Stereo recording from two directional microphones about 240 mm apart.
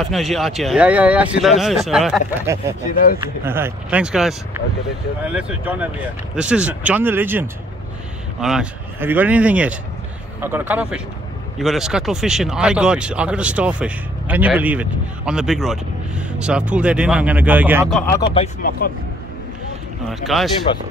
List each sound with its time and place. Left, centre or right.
0.0 s speech: centre
2.9 s speech: left
3.2 s speech: centre
18.1 s speech: left
20.1 s speech: centre